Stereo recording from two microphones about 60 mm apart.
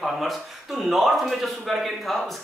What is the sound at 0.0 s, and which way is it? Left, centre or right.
Speech, centre.